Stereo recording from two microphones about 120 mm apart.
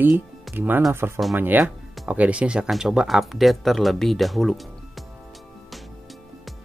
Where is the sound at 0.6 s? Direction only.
15° right (ahead or behind); by 5.0 s centre (ahead or behind).